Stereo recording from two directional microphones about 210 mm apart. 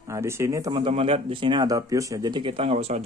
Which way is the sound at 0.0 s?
15° right (ahead or behind).